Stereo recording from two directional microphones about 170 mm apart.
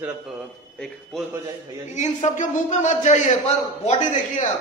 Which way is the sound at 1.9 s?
45° left (ahead or behind).